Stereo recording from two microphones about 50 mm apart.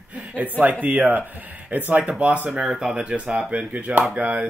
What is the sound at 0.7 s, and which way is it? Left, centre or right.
Speech, right.